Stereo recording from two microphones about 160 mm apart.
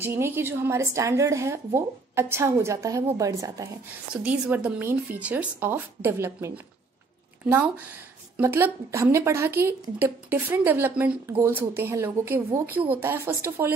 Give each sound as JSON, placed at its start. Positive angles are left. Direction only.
{"t": 0.0, "sound": "a woman's voice", "side_deg": -15}
{"t": 4.1, "sound": "a woman's voice", "side_deg": -10}